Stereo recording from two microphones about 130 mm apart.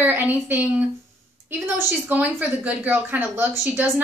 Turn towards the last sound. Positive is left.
turn(degrees=-15)  # may be behind; listen again after turning